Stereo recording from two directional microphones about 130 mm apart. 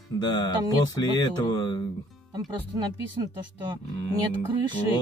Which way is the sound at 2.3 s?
30° right (ahead or behind).